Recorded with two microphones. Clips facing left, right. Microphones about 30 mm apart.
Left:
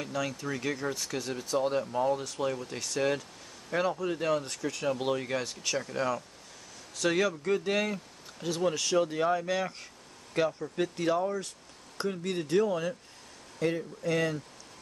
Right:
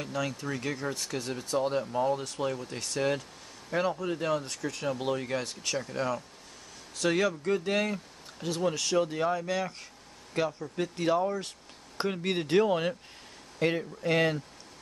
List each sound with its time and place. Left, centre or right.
0.0 s speech: centre
12.0 s speech: right